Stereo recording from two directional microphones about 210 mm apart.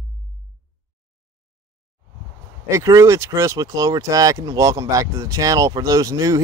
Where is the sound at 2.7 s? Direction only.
15° right (ahead or behind).